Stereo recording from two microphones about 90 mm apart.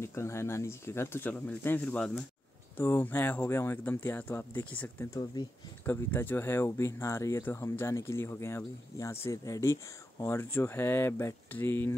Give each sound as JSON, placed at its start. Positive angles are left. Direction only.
{"t": 0.0, "sound": "speech", "side_deg": 30}